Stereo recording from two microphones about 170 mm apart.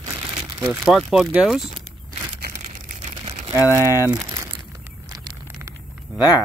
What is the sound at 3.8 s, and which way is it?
Speech, 20° left (ahead or behind).